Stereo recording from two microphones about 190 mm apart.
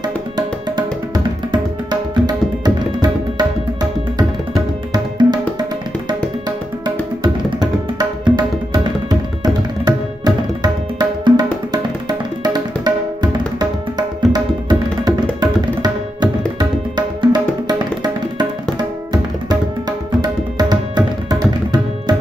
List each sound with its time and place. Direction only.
0.4 s music: 20° right (ahead or behind)
4.9 s music: 20° right (ahead or behind)
7.4 s music: 20° right (ahead or behind)
15.4 s tabla: 20° right (ahead or behind)
20.2 s tabla: 20° right (ahead or behind)